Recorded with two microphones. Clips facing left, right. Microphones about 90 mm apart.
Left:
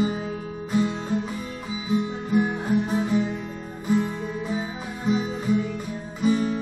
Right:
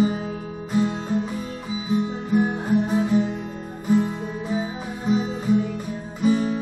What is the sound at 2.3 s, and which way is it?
Guitar, 40° right (ahead or behind).